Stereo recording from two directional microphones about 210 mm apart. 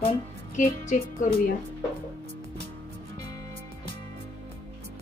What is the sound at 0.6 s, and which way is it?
Speech, 40° left (ahead or behind).